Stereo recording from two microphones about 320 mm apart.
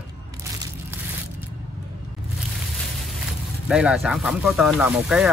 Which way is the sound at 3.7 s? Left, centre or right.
Centre.